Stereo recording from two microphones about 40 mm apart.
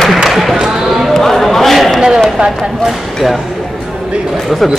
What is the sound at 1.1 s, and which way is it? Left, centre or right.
Speech, centre.